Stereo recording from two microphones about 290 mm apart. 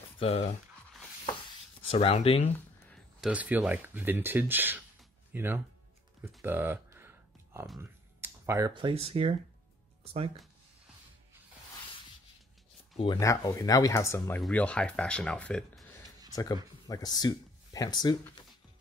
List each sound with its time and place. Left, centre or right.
0.2 s speech: left
1.9 s speech: centre
2.9 s speech: centre
6.2 s a sound: centre
10.1 s speech: right
13.0 s speech: centre
16.3 s music: centre
16.8 s speech: centre